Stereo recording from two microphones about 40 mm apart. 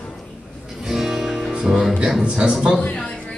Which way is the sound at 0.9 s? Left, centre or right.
Centre.